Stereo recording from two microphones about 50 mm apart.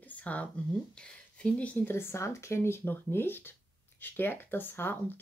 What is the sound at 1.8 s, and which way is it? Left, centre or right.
Speech, left.